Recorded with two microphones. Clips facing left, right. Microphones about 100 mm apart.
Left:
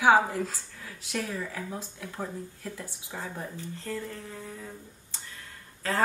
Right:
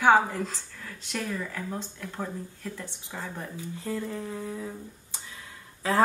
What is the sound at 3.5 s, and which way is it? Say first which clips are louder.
Speech: right 2 dB; 10° right (ahead or behind).